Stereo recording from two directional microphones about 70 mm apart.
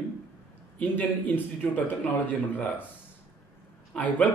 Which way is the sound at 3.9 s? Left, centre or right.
Left.